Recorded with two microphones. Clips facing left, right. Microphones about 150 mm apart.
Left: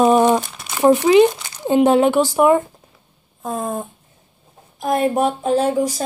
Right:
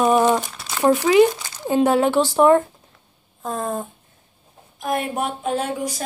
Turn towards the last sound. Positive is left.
turn(degrees=35)  # may be behind; listen again after turning